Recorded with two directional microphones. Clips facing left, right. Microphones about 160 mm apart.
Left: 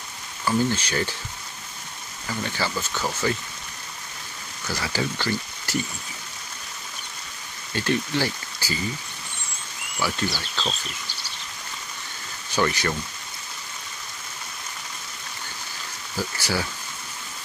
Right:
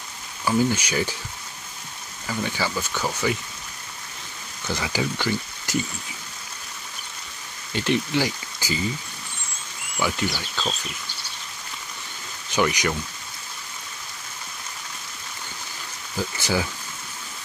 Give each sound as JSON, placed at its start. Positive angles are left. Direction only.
{"t": 0.5, "sound": "speech", "side_deg": -15}
{"t": 2.2, "sound": "speech", "side_deg": -10}
{"t": 4.6, "sound": "speech", "side_deg": -15}
{"t": 7.7, "sound": "speech", "side_deg": -20}
{"t": 9.9, "sound": "speech", "side_deg": -15}
{"t": 12.5, "sound": "speech", "side_deg": -15}
{"t": 16.3, "sound": "speech", "side_deg": -20}